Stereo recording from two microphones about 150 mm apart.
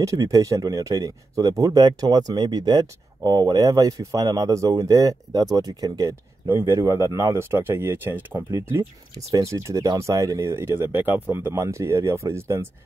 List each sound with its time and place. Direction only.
0.0 s speech: 25° right (ahead or behind)